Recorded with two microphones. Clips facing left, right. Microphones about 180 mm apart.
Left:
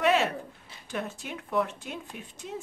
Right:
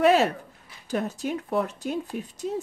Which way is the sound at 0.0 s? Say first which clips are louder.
Right 5 dB; 40° right (ahead or behind).